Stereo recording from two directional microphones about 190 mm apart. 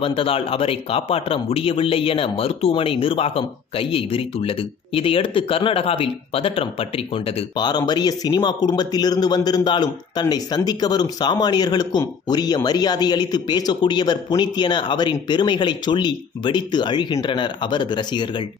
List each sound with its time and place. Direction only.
0.0 s speech: 30° left (ahead or behind)